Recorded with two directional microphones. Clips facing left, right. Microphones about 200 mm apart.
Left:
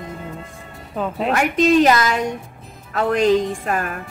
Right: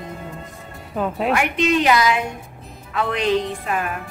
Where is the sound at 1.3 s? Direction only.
40° left (ahead or behind).